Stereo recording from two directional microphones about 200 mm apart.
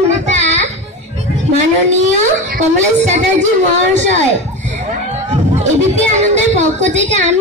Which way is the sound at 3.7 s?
35° right (ahead or behind).